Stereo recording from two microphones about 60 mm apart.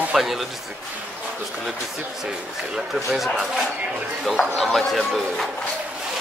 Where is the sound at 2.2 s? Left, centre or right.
Centre.